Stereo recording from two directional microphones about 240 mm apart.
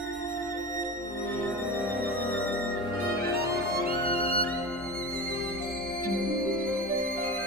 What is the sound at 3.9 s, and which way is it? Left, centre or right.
Violin, left.